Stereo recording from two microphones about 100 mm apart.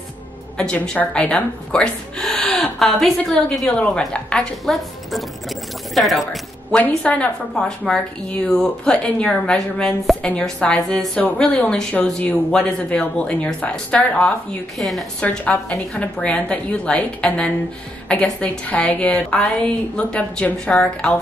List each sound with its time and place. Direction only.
0.6 s a woman's voice: 10° left (ahead or behind)
14.8 s a woman's voice: centre (ahead or behind)
15.2 s a woman's voice: 15° left (ahead or behind)